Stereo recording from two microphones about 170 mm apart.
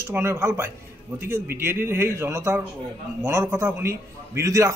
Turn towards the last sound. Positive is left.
turn(degrees=-20)  # may be behind; listen again after turning